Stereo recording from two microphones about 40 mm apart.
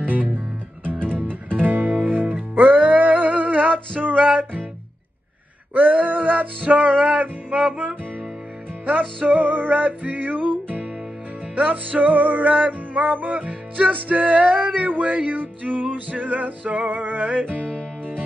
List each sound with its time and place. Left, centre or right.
0.0 s music: right
4.0 s music: centre
4.3 s music: right
5.8 s music: right
9.2 s music: right